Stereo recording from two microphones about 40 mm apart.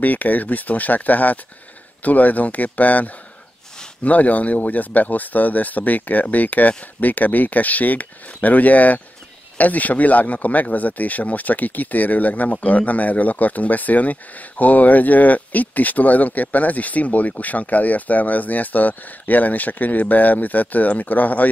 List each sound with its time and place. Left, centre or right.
0.0 s speech: left